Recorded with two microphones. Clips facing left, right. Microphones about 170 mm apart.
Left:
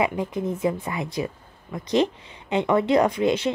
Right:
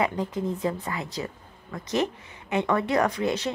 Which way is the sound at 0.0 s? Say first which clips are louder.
Left 2 dB; 15° left (ahead or behind).